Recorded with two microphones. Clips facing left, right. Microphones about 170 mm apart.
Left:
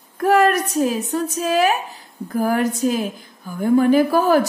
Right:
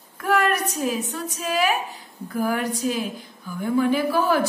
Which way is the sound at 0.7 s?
35° left (ahead or behind).